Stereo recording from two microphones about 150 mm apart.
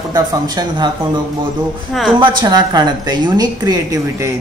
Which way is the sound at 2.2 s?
25° right (ahead or behind).